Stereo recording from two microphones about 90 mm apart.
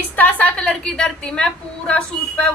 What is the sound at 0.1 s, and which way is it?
A woman's voice, 20° left (ahead or behind).